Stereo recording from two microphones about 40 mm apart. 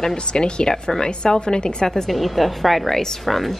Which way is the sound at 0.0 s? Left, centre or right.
Centre.